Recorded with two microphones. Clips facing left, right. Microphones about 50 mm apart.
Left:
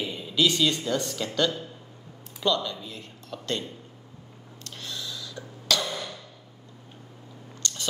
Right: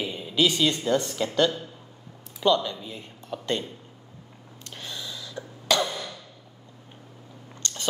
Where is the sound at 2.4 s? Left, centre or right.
Centre.